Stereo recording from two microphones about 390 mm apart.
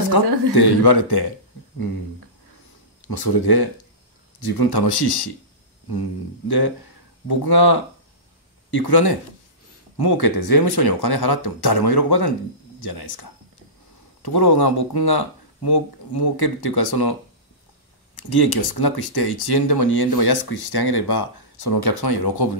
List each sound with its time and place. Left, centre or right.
0.1 s speech: left
3.1 s speech: left
18.1 s speech: left